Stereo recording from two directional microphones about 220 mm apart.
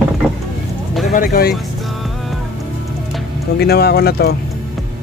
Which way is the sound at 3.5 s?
45° left (ahead or behind).